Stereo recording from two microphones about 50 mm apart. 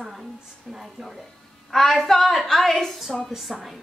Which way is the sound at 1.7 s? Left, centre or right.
Centre.